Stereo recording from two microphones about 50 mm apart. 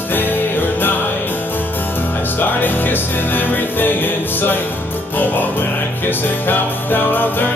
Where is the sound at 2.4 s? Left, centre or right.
Left.